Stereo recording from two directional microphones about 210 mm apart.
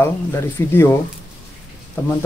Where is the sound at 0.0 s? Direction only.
10° left (ahead or behind).